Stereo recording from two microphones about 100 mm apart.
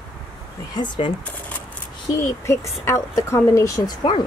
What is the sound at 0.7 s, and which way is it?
Speech, 50° left (ahead or behind).